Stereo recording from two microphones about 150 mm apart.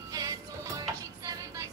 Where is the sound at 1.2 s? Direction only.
20° right (ahead or behind).